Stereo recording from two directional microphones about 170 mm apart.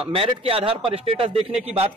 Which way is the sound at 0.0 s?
35° right (ahead or behind).